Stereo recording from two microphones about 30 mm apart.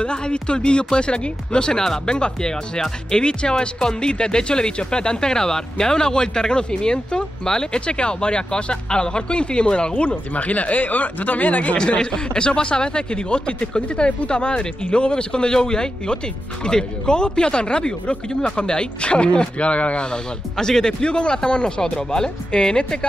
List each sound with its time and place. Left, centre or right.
0.0 s speech: left
12.0 s speech: left
19.7 s speech: left
20.5 s speech: centre
21.0 s speech: left